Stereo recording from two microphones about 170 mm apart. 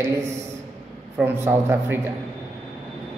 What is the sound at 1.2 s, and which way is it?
Speech, 15° right (ahead or behind).